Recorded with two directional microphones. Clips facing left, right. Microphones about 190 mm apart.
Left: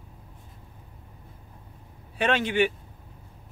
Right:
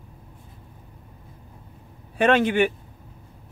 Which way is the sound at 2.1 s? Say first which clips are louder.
Right 5 dB; 50° right (ahead or behind).